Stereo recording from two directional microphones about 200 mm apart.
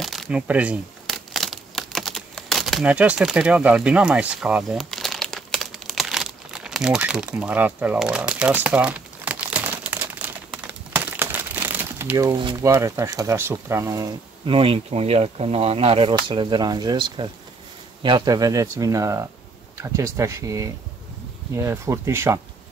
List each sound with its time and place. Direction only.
0.0 s crumpling: centre (ahead or behind); by 12.7 s 20° right (ahead or behind)
12.7 s speech: 10° right (ahead or behind)